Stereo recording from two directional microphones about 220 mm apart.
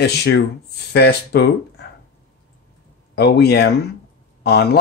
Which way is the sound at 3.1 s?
50° left (ahead or behind).